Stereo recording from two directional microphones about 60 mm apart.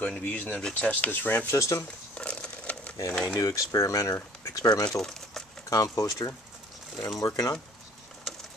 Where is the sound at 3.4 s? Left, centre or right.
Left.